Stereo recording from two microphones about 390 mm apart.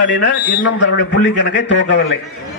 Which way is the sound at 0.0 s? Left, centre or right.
Left.